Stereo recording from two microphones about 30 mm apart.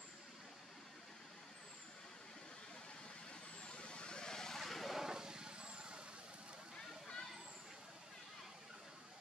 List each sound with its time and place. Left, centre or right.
3.6 s vehicle: left
4.3 s vehicle: centre
4.6 s vehicle: centre
5.0 s vehicle: right